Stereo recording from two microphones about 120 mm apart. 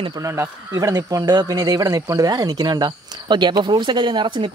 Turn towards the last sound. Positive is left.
turn(degrees=-40)  # may be behind; listen again after turning